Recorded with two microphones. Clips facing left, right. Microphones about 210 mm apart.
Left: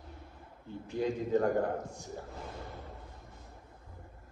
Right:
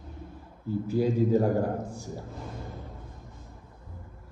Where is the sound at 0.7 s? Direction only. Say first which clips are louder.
Right 7 dB; 5° right (ahead or behind).